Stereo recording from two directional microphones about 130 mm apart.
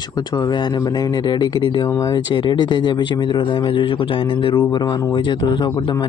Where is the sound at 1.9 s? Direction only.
25° left (ahead or behind).